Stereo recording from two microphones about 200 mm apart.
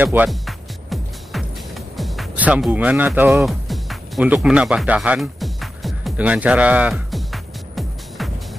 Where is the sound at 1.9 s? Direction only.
Centre (ahead or behind).